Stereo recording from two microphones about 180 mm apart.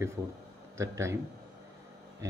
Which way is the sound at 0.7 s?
15° right (ahead or behind).